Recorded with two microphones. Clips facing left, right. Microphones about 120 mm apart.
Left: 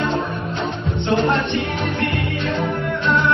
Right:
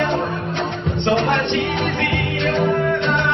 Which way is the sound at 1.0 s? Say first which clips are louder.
Even; 70° right (ahead or behind).